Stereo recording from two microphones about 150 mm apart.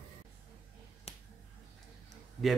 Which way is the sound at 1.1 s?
45° left (ahead or behind).